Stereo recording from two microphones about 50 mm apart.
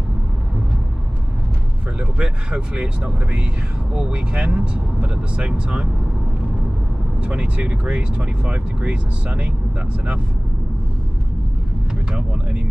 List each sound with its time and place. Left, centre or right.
2.0 s speech: centre
7.2 s speech: right